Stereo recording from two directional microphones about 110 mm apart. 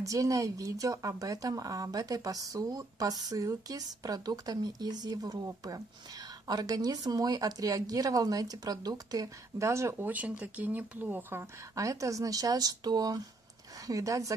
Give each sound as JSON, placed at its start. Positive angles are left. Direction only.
{"t": 0.0, "sound": "speech", "side_deg": -30}
{"t": 11.7, "sound": "speech", "side_deg": -30}